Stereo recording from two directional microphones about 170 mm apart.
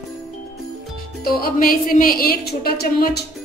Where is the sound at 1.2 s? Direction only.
60° left (ahead or behind).